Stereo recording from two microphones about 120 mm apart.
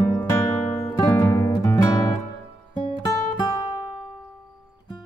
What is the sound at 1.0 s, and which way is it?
Music, 25° left (ahead or behind).